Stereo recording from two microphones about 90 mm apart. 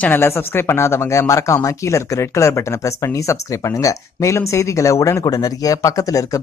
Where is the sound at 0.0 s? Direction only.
25° left (ahead or behind).